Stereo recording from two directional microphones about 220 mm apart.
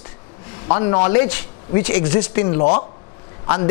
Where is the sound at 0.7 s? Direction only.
25° left (ahead or behind).